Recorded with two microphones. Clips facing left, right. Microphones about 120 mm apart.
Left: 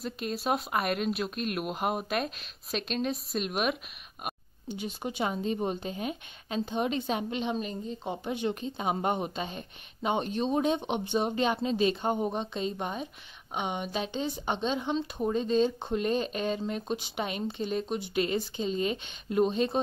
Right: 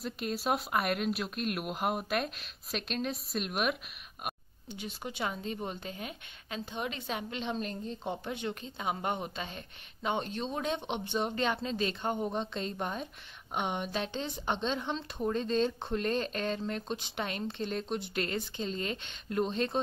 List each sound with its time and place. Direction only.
0.0 s speech: 5° right (ahead or behind)
4.7 s a woman's voice: 15° left (ahead or behind)
8.2 s speech: 20° left (ahead or behind)